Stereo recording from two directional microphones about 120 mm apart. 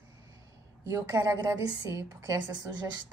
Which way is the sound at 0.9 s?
30° right (ahead or behind).